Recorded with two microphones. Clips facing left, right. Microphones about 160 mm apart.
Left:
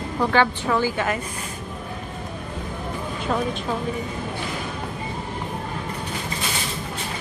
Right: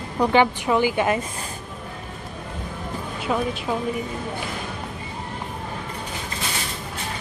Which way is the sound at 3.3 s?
Centre (ahead or behind).